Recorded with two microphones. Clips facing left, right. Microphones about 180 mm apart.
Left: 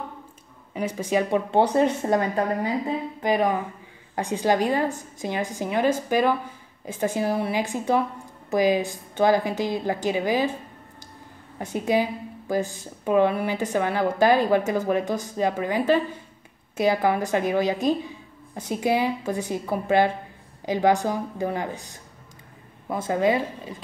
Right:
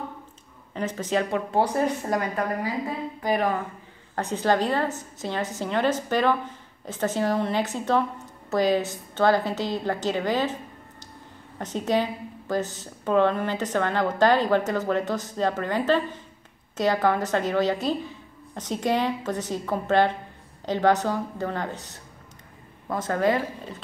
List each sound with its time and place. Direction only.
0.7 s a woman's voice: 10° left (ahead or behind)
1.5 s a woman's voice: 25° left (ahead or behind)